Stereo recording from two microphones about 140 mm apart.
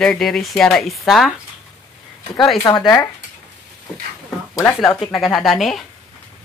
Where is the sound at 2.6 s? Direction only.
30° left (ahead or behind).